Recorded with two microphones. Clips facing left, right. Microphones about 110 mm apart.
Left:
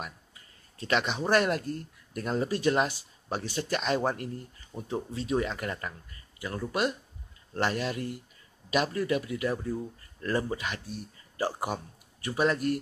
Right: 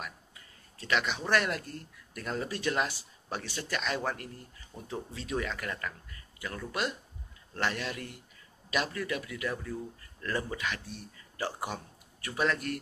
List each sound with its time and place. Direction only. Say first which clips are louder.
0.7 s speech: left 3 dB; 35° left (ahead or behind)
2.5 s speech: left 5 dB; 20° left (ahead or behind)
3.7 s speech: left 5 dB; 45° left (ahead or behind)
4.7 s speech: left 6 dB; 25° left (ahead or behind)
7.5 s speech: left 4 dB; 35° left (ahead or behind)